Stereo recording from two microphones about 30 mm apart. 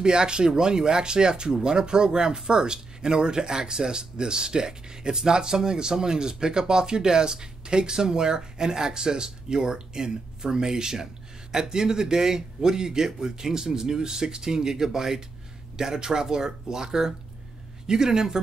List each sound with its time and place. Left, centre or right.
0.0 s speech: right